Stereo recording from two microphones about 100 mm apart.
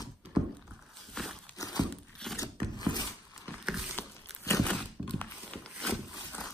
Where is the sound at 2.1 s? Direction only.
5° left (ahead or behind).